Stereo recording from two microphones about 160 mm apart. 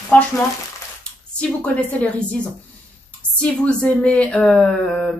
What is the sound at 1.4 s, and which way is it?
Speech, 5° left (ahead or behind).